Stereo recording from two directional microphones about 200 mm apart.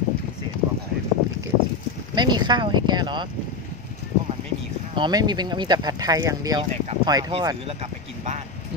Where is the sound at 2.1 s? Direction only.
20° right (ahead or behind).